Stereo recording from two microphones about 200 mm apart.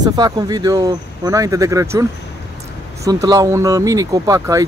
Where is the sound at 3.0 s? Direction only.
20° right (ahead or behind).